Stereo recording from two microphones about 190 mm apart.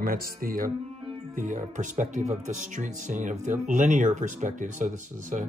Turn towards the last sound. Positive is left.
turn(degrees=-40)  # may be behind; listen again after turning